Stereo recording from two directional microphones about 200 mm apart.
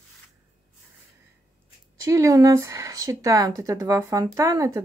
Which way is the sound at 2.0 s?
15° right (ahead or behind).